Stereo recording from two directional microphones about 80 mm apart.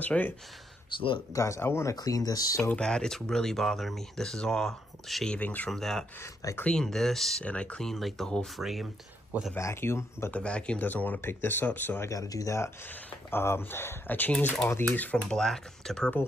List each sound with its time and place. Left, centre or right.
0.0 s speech: centre
0.9 s speech: left
1.3 s speech: left
2.0 s speech: left
2.7 s speech: centre
5.4 s speech: left
5.7 s speech: centre
7.4 s speech: centre
9.6 s speech: left
10.3 s speech: centre
12.1 s speech: left; by 15.2 s centre
15.2 s speech: centre